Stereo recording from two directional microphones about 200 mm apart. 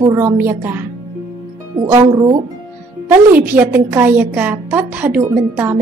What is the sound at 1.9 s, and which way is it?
Speech, 20° right (ahead or behind).